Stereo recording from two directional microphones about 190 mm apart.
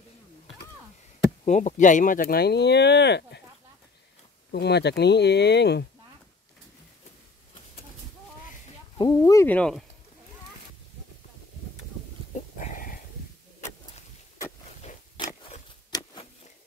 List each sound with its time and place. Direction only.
1.4 s speech: 40° left (ahead or behind); by 3.4 s 60° left (ahead or behind)
4.5 s speech: 60° left (ahead or behind)
8.9 s speech: 20° left (ahead or behind); by 9.8 s 5° left (ahead or behind)
12.5 s dog: 45° left (ahead or behind)
15.1 s a sound: 25° left (ahead or behind)